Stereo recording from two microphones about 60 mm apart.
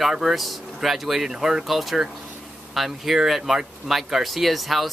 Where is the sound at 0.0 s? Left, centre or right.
Centre.